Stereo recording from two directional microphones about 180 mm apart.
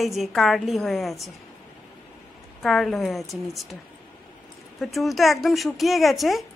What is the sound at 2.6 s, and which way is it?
Speech, centre (ahead or behind).